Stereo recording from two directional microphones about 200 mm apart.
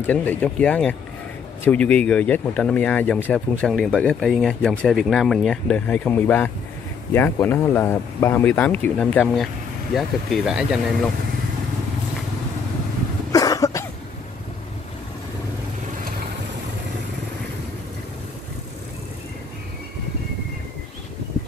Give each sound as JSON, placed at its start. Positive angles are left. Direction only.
{"t": 0.0, "sound": "speech", "side_deg": 10}
{"t": 13.3, "sound": "cough", "side_deg": 20}